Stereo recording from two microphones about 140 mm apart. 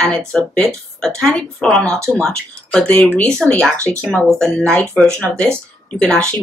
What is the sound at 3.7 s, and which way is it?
Speech, 20° right (ahead or behind).